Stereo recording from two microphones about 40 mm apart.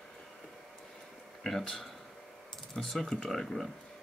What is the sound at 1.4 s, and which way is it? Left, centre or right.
Speech, centre.